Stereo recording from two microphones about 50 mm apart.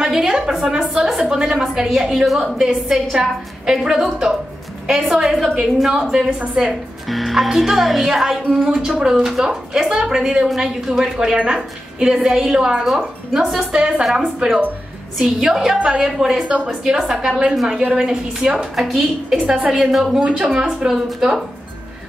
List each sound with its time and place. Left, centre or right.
0.0 s speech: centre
2.6 s speech: centre
5.9 s speech: centre
7.1 s a woman's voice: centre
13.7 s speech: centre
17.0 s speech: centre
19.3 s speech: right
19.7 s speech: centre
20.2 s speech: right